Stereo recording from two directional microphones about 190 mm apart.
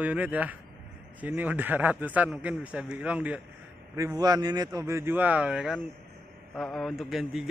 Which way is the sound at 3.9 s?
20° right (ahead or behind).